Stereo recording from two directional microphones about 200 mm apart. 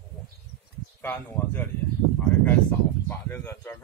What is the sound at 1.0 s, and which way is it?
Speech, 10° left (ahead or behind).